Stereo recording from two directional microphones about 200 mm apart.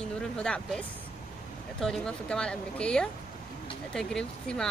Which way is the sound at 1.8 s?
5° left (ahead or behind).